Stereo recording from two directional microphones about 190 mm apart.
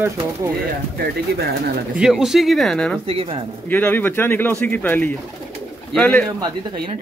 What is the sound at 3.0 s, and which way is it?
Speech, 30° right (ahead or behind).